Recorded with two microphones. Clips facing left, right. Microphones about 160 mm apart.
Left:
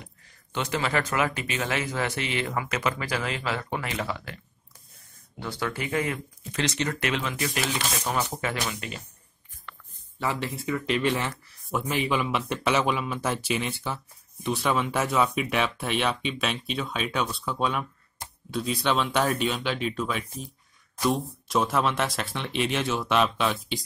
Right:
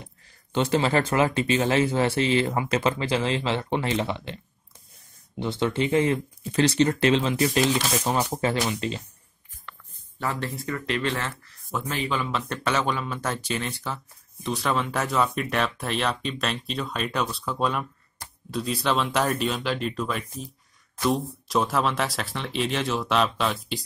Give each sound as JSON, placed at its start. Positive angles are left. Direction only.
{"t": 0.0, "sound": "speech", "side_deg": -30}
{"t": 5.4, "sound": "speech", "side_deg": -25}
{"t": 10.2, "sound": "speech", "side_deg": 5}